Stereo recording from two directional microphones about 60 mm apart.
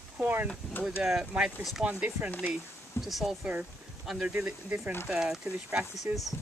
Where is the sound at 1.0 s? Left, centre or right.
Centre.